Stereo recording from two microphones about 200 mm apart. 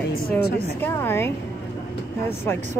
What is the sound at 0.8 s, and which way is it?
Speech, 10° left (ahead or behind).